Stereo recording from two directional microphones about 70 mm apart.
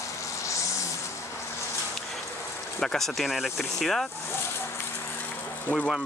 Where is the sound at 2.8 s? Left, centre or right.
Centre.